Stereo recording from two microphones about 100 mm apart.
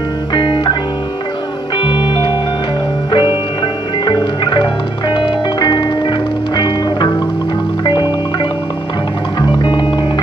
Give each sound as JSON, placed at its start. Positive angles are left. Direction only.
{"t": 0.3, "sound": "music", "side_deg": 50}
{"t": 1.8, "sound": "music", "side_deg": 55}